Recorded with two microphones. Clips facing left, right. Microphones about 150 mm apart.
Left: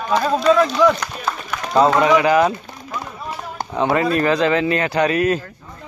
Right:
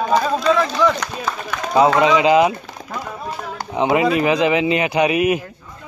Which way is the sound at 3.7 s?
15° right (ahead or behind).